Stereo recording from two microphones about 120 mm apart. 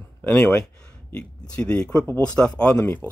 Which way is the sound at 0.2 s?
10° left (ahead or behind).